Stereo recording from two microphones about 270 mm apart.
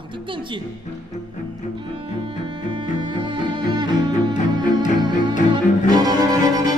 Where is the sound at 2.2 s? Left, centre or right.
Centre.